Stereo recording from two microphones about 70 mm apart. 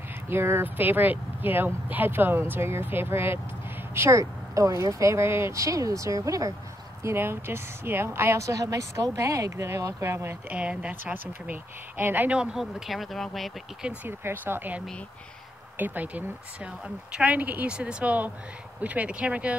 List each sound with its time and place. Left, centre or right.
0.3 s a woman's voice: right
7.0 s a woman's voice: right
10.5 s speech: centre
12.0 s a woman's voice: right
12.5 s speech: centre
14.0 s a woman's voice: right
15.8 s a woman's voice: right